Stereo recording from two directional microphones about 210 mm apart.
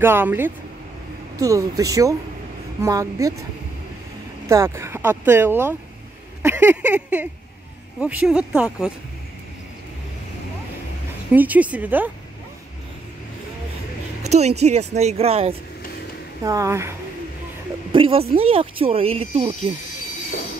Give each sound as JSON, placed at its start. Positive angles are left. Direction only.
{"t": 0.0, "sound": "speech", "side_deg": -10}
{"t": 4.5, "sound": "speech", "side_deg": -15}
{"t": 11.3, "sound": "speech", "side_deg": -5}
{"t": 14.2, "sound": "speech", "side_deg": -30}
{"t": 16.4, "sound": "speech", "side_deg": -15}
{"t": 17.9, "sound": "speech", "side_deg": -25}